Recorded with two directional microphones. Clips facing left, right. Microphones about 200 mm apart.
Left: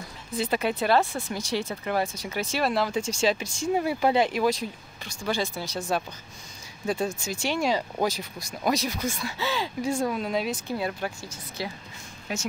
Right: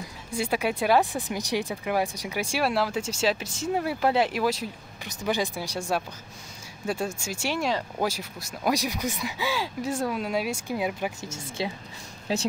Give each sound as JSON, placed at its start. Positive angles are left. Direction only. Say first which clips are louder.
{"t": 0.3, "sound": "speech", "louder": "even", "side_deg": -10}
{"t": 5.0, "sound": "speech", "louder": "right 1 dB", "side_deg": -15}
{"t": 11.1, "sound": "speech", "louder": "right 3 dB", "side_deg": -25}